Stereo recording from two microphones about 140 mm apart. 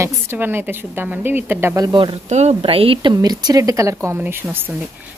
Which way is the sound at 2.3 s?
50° right (ahead or behind).